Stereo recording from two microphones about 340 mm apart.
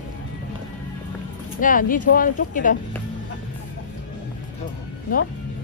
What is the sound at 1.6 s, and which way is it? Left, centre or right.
Speech, left.